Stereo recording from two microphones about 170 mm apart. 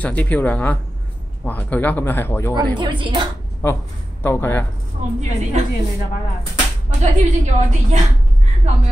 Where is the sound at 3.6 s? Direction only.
10° left (ahead or behind).